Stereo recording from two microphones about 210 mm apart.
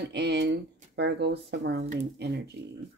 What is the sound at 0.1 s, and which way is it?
Speech, 55° right (ahead or behind).